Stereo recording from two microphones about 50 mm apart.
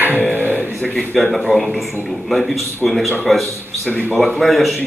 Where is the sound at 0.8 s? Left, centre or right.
Centre.